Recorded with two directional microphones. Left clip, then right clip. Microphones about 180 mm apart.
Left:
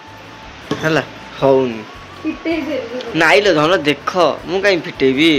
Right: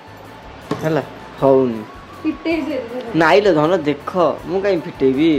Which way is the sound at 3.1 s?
25° right (ahead or behind).